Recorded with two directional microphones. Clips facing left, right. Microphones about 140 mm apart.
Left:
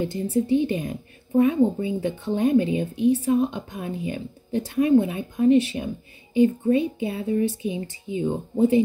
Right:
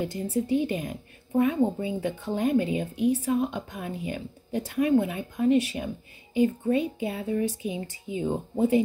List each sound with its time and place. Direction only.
0.0 s speech: 25° left (ahead or behind)